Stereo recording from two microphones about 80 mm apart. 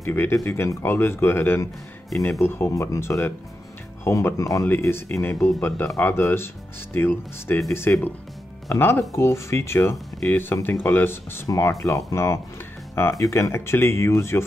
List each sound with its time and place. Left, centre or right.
0.0 s speech: left
11.4 s speech: left